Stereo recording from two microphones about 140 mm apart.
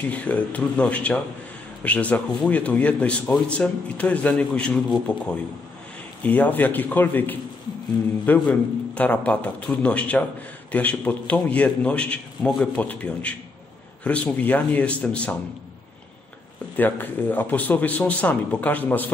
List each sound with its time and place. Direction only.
0.0 s a man's voice: 10° left (ahead or behind)
16.7 s a man's voice: 15° left (ahead or behind)